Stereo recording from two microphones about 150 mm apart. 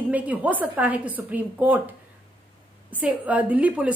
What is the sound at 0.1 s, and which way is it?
A woman's voice, 10° right (ahead or behind).